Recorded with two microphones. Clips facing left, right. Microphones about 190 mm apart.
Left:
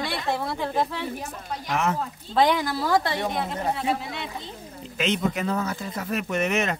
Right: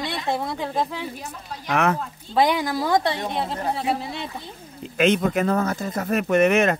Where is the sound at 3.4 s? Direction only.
30° right (ahead or behind).